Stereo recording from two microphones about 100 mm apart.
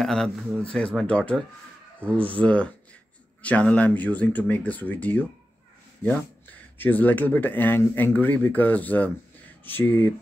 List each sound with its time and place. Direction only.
0.0 s a sound: 5° left (ahead or behind)
0.6 s speech: 10° left (ahead or behind)
6.8 s speech: 20° left (ahead or behind)